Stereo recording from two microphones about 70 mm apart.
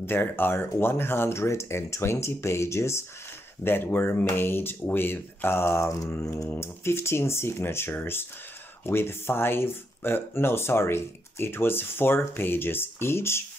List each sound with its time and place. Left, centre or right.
0.0 s speech: left
3.6 s speech: left